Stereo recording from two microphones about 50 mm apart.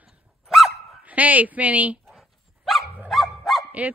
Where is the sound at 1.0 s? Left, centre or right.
Right.